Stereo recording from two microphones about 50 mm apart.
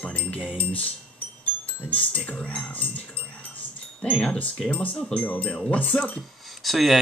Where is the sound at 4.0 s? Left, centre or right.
Left.